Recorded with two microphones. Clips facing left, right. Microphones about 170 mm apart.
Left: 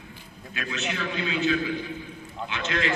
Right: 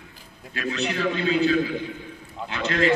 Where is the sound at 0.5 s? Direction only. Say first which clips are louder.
Right 5 dB; 35° right (ahead or behind).